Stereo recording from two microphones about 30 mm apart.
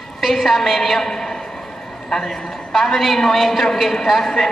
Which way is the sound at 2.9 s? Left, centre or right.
Centre.